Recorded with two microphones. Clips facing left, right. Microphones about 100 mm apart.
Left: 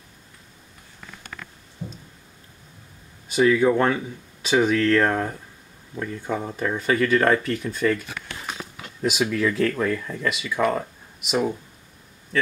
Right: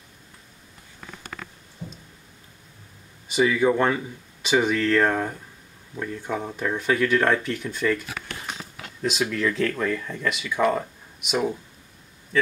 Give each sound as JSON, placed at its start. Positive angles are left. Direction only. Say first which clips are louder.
{"t": 3.3, "sound": "speech", "louder": "left 2 dB", "side_deg": 0}
{"t": 9.0, "sound": "speech", "louder": "left 2 dB", "side_deg": 5}